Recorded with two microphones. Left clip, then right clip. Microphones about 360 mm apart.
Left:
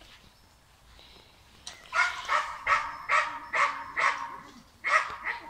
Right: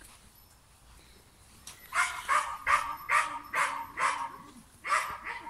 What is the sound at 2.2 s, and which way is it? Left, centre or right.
Dog, centre.